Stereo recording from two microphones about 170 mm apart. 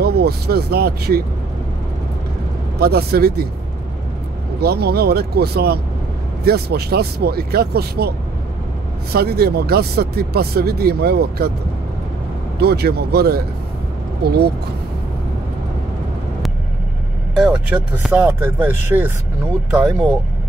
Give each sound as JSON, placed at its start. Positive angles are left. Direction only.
{"t": 0.0, "sound": "speech", "side_deg": -70}
{"t": 2.8, "sound": "speech", "side_deg": -70}
{"t": 4.6, "sound": "speech", "side_deg": -70}
{"t": 9.1, "sound": "speech", "side_deg": -65}
{"t": 12.5, "sound": "speech", "side_deg": -70}
{"t": 17.7, "sound": "speech", "side_deg": -15}
{"t": 18.9, "sound": "speech", "side_deg": -15}